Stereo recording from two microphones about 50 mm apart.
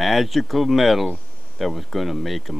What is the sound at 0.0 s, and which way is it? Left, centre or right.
Speech, centre.